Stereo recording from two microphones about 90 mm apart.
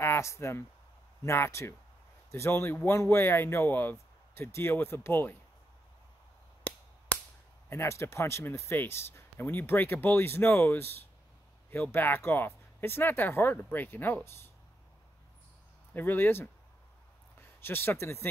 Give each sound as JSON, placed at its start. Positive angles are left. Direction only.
{"t": 0.0, "sound": "speech", "side_deg": 30}
{"t": 7.1, "sound": "a sound", "side_deg": 15}
{"t": 7.7, "sound": "speech", "side_deg": 30}
{"t": 15.9, "sound": "speech", "side_deg": 20}